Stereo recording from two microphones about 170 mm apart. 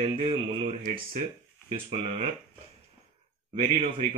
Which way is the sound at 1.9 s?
35° right (ahead or behind).